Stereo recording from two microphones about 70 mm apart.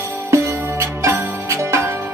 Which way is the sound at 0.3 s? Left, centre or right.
Right.